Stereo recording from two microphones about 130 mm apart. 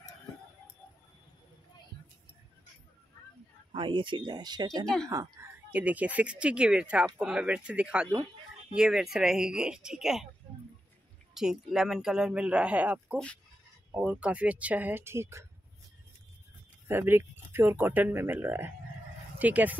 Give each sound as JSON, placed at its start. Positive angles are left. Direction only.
{"t": 3.7, "sound": "speech", "side_deg": -40}
{"t": 4.8, "sound": "speech", "side_deg": 5}
{"t": 5.1, "sound": "speech", "side_deg": -25}
{"t": 5.7, "sound": "speech", "side_deg": -10}
{"t": 11.3, "sound": "speech", "side_deg": -5}
{"t": 16.8, "sound": "speech", "side_deg": -15}